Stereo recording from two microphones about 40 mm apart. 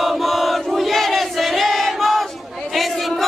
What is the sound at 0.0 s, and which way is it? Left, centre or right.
Battle cry, centre.